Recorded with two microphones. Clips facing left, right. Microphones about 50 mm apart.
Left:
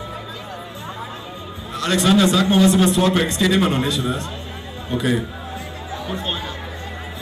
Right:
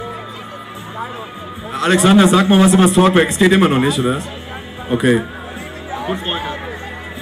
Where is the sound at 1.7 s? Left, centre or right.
Right.